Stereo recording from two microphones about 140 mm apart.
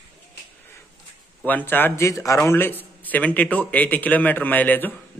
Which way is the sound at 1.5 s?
15° left (ahead or behind).